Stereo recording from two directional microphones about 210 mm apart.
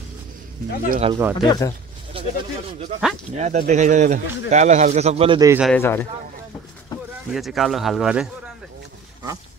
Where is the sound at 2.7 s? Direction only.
35° right (ahead or behind).